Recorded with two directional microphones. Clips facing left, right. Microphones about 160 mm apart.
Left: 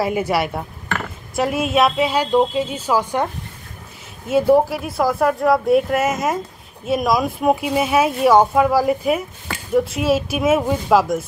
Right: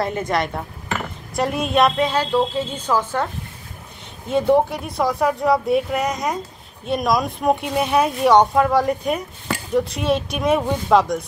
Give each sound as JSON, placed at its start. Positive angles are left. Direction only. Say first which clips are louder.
{"t": 0.0, "sound": "a woman's voice", "louder": "left 2 dB", "side_deg": 10}
{"t": 4.3, "sound": "speech", "louder": "left 2 dB", "side_deg": 5}